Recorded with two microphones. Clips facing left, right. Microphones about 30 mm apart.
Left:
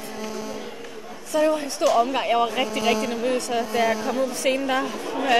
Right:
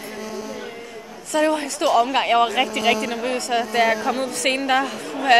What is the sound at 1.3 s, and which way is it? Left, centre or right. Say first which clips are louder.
A woman's voice: right 1 dB; right.